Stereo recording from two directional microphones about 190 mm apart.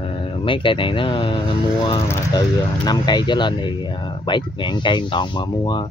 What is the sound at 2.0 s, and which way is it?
Speech, 15° left (ahead or behind).